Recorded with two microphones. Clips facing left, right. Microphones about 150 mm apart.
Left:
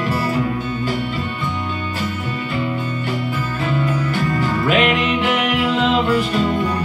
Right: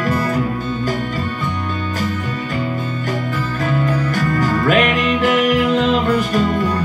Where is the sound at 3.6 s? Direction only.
45° right (ahead or behind).